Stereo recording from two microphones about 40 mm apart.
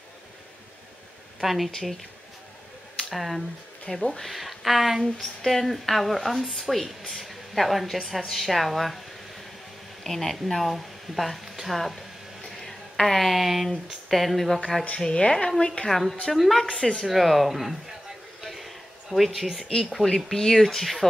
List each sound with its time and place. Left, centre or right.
1.4 s speech: centre
3.1 s speech: centre
3.9 s speech: centre
4.3 s speech: centre
10.0 s a woman's voice: centre
15.0 s speech: left
15.9 s speech: centre
18.4 s a sound: centre
20.0 s speech: centre